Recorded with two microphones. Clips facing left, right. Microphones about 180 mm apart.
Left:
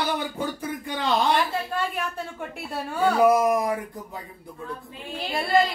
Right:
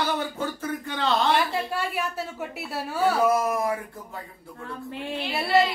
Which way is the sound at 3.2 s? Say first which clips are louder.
Left 7 dB; 15° left (ahead or behind).